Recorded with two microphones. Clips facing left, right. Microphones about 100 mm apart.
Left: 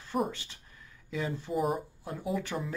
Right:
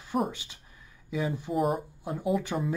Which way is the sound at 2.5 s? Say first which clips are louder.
Right 4 dB; 20° right (ahead or behind).